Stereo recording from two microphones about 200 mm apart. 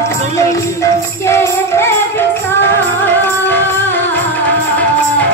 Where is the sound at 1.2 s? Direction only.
15° left (ahead or behind).